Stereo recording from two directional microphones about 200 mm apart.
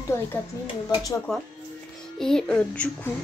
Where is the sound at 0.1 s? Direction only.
15° left (ahead or behind).